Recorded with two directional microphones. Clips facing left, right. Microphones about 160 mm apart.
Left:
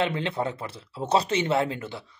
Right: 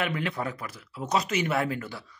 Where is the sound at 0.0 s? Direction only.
30° left (ahead or behind).